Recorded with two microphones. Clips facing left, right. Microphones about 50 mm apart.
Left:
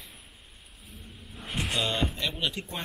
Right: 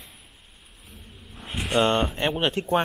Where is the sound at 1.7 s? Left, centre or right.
Right.